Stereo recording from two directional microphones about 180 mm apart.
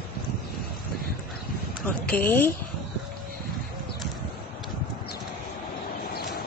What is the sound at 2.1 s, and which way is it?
Speech, 10° left (ahead or behind).